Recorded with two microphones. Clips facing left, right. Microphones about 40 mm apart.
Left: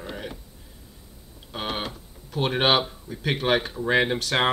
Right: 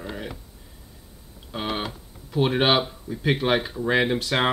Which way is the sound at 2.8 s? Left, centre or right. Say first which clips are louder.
Right 4 dB; centre.